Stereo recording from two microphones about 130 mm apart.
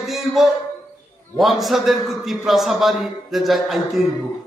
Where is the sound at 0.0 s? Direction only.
Centre (ahead or behind).